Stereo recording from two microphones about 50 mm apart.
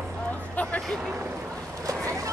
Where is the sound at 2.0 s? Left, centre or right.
Right.